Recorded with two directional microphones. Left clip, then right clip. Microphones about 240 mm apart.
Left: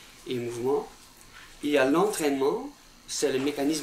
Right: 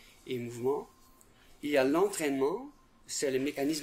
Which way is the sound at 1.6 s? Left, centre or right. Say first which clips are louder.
Left 4 dB; right.